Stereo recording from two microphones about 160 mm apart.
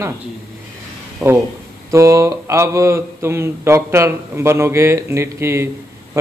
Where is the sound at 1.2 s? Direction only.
20° right (ahead or behind).